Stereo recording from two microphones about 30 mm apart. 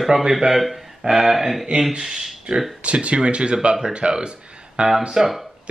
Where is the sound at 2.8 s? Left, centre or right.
Right.